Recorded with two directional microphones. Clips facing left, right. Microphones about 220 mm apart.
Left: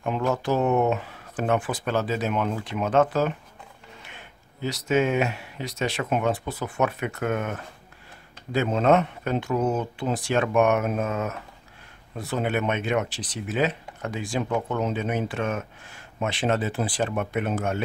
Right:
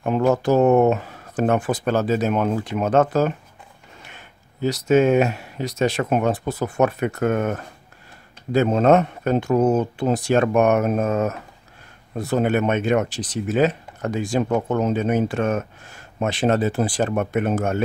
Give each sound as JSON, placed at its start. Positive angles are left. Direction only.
{"t": 0.0, "sound": "speech", "side_deg": -45}